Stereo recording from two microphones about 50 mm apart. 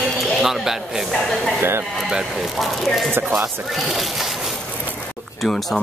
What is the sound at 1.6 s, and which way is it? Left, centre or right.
Speech, right.